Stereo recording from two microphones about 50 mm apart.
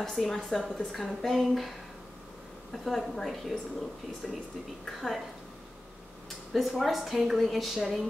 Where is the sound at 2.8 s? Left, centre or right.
Centre.